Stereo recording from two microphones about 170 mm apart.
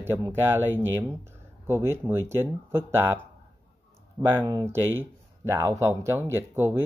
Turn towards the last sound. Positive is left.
turn(degrees=-15)  # may be behind; listen again after turning